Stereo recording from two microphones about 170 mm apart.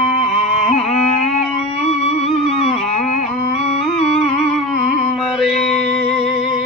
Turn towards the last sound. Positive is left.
turn(degrees=0)  # may be behind; listen again after turning